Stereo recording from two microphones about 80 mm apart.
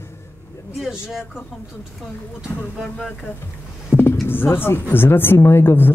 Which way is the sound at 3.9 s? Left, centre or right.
Left.